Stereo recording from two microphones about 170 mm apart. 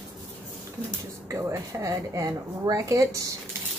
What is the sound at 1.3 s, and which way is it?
Speech, 15° right (ahead or behind).